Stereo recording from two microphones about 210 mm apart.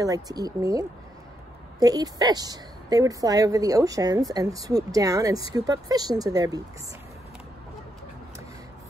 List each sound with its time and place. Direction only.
0.0 s a woman's voice: 15° right (ahead or behind)